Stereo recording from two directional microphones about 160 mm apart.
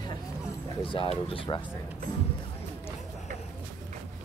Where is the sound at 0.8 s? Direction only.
35° left (ahead or behind).